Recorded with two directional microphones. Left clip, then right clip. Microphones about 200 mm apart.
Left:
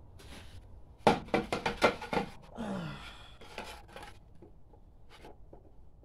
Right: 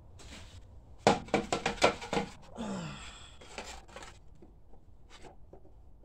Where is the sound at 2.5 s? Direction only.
15° left (ahead or behind).